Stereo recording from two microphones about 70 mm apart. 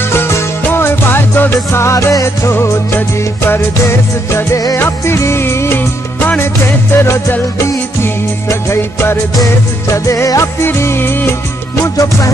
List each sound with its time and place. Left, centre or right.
0.1 s music: left
10.6 s music: left
11.8 s music: left